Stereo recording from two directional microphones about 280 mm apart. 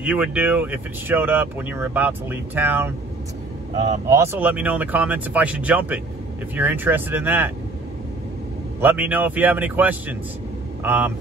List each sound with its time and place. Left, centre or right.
0.0 s speech: centre
4.1 s speech: centre
8.8 s speech: centre